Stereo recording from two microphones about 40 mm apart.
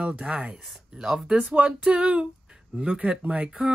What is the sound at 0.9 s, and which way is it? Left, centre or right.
Speech, right.